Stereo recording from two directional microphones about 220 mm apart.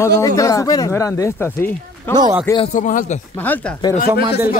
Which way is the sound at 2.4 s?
20° left (ahead or behind).